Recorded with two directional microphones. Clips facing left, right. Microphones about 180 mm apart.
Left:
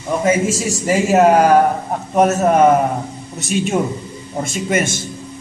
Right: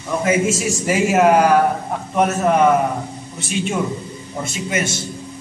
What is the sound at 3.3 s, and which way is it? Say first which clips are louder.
A man's voice: left 4 dB; 45° left (ahead or behind).